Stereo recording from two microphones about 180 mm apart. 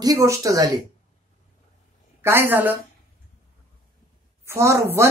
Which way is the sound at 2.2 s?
15° right (ahead or behind).